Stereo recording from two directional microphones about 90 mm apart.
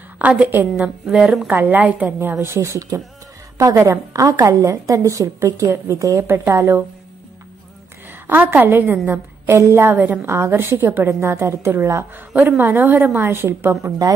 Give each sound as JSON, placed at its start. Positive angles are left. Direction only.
{"t": 0.2, "sound": "a woman's voice", "side_deg": -15}
{"t": 1.6, "sound": "a woman's voice", "side_deg": -20}
{"t": 2.4, "sound": "a woman's voice", "side_deg": -30}
{"t": 8.3, "sound": "a woman's voice", "side_deg": -20}
{"t": 10.2, "sound": "a woman's voice", "side_deg": -30}